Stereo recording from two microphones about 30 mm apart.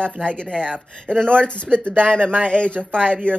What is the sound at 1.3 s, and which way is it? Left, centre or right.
Speech, left.